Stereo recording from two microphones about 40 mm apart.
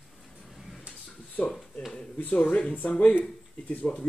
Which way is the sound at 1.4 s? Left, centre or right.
Left.